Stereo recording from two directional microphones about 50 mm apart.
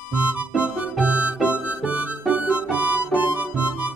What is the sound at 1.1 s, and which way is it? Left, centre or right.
Music, right.